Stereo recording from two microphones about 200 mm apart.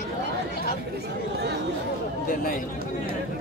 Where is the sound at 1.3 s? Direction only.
55° right (ahead or behind).